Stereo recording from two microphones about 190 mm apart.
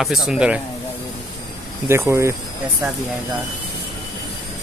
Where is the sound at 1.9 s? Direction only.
15° right (ahead or behind).